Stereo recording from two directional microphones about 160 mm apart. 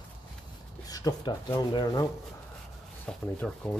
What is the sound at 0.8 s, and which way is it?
Speech, 25° left (ahead or behind).